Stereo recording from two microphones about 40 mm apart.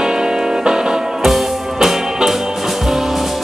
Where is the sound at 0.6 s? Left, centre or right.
Centre.